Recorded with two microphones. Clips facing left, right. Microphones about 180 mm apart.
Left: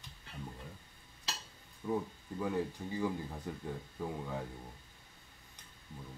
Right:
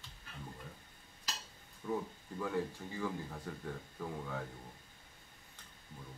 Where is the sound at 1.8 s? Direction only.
10° left (ahead or behind).